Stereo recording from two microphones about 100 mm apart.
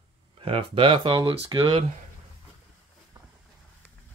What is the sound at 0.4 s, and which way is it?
Speech, 70° right (ahead or behind).